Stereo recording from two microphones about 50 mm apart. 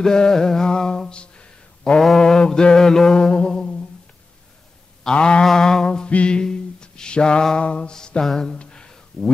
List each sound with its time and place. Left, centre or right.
0.0 s speech: centre
2.0 s mantra: centre
5.0 s a sound: centre
9.1 s speech: centre